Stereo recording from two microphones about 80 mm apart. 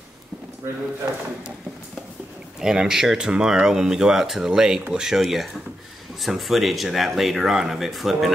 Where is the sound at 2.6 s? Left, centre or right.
Centre.